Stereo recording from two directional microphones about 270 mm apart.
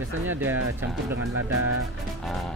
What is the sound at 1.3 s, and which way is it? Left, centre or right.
Speech, right.